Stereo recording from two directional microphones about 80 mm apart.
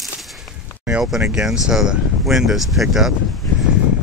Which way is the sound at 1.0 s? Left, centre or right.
Centre.